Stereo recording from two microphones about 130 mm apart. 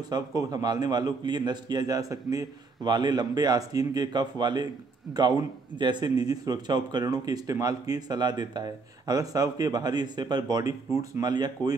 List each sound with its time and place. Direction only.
0.1 s a man's voice: 30° right (ahead or behind)